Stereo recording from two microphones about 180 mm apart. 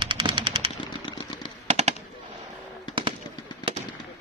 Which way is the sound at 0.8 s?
25° left (ahead or behind).